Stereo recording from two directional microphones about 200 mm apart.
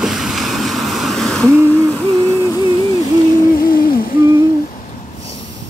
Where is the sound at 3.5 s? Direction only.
45° left (ahead or behind).